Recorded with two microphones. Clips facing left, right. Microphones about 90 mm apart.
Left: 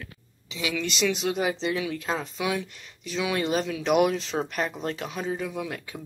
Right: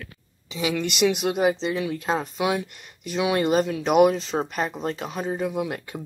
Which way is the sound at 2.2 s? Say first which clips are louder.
Right 4 dB; 55° right (ahead or behind).